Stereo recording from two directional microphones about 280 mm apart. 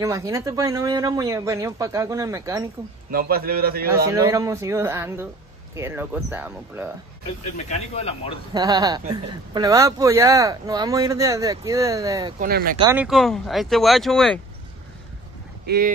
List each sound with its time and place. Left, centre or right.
0.0 s speech: centre
3.1 s a man's voice: right
3.9 s speech: centre
7.5 s speech: left
8.5 s speech: centre
12.4 s a man's voice: right
12.7 s speech: centre
13.0 s speech: centre
15.6 s speech: right